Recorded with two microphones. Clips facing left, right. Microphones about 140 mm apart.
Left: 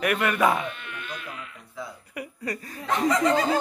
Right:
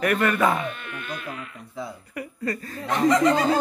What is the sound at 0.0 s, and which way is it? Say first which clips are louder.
Speech: right 2 dB; 10° left (ahead or behind).